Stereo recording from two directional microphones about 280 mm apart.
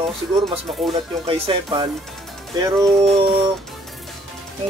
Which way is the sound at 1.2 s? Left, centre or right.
Centre.